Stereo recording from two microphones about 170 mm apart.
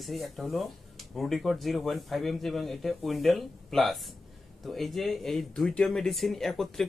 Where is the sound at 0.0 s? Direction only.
Centre (ahead or behind).